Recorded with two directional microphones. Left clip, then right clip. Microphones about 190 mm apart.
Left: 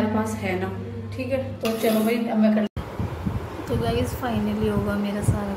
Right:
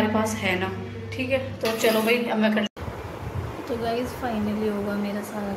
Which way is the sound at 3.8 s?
15° left (ahead or behind).